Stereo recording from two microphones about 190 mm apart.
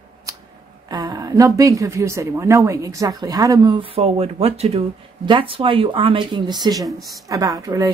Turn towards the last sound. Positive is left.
turn(degrees=-20)  # may be behind; listen again after turning